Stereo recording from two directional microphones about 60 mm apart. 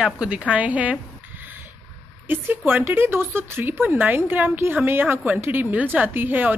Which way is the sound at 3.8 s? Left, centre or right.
Right.